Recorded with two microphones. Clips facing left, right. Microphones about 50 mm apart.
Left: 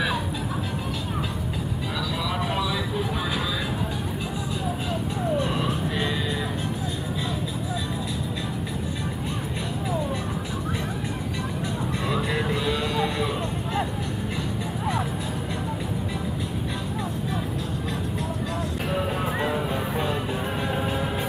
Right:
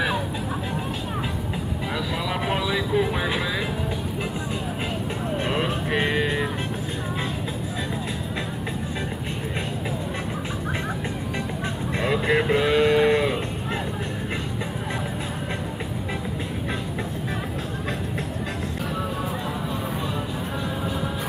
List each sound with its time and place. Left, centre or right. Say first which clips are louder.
2.5 s vehicle: right 4 dB; right
5.4 s vehicle: right 1 dB; right
12.1 s a sound: right 6 dB; right